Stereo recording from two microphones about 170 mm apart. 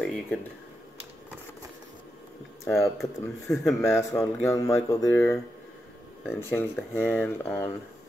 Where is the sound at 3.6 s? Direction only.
15° left (ahead or behind).